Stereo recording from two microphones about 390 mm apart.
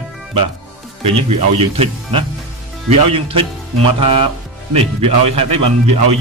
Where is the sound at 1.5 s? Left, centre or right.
Centre.